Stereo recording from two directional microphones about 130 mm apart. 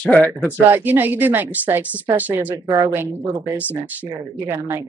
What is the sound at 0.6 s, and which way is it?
Speech, 15° right (ahead or behind).